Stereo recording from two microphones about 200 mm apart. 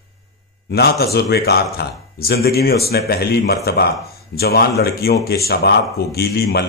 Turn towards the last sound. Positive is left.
turn(degrees=50)  # may be behind; listen again after turning